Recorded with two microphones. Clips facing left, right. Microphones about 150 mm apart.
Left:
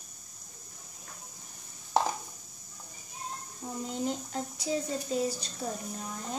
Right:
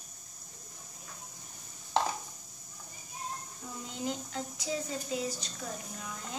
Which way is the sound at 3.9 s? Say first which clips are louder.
Left 2 dB; 40° left (ahead or behind).